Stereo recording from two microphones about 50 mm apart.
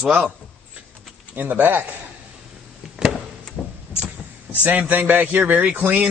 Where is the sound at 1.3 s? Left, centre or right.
Right.